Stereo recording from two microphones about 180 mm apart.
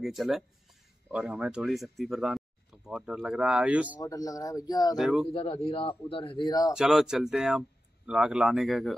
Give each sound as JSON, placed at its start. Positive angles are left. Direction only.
{"t": 0.0, "sound": "speech", "side_deg": 0}
{"t": 4.0, "sound": "a man's voice", "side_deg": 20}
{"t": 4.9, "sound": "speech", "side_deg": 0}
{"t": 5.3, "sound": "a man's voice", "side_deg": 30}
{"t": 6.7, "sound": "speech", "side_deg": 0}